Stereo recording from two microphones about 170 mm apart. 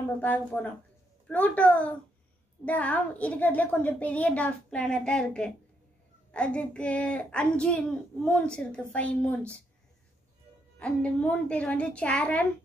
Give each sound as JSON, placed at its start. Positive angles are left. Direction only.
{"t": 0.2, "sound": "a child's voice", "side_deg": 10}
{"t": 10.8, "sound": "a child's voice", "side_deg": 5}